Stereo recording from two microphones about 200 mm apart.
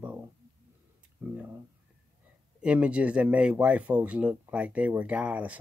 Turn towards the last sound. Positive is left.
turn(degrees=-5)  # may be behind; listen again after turning